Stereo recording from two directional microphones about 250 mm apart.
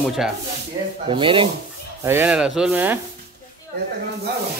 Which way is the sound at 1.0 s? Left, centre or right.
Right.